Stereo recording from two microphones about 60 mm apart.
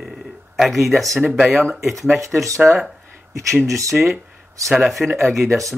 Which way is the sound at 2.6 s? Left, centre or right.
Centre.